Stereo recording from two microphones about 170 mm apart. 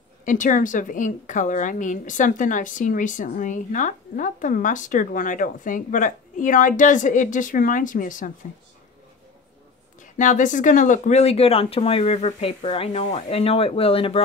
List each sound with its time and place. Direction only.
0.2 s a woman's voice: 50° left (ahead or behind)
10.1 s speech: 45° left (ahead or behind)